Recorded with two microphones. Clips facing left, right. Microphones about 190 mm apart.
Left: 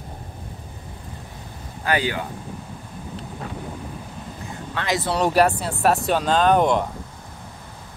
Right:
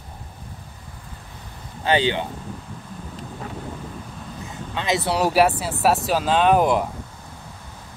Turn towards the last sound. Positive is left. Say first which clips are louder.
# even
turn(degrees=-5)  # may be behind; listen again after turning